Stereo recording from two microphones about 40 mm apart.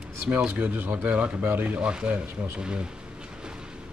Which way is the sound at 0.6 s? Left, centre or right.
Right.